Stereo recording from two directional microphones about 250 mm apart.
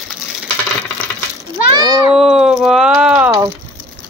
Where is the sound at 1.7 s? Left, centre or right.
Centre.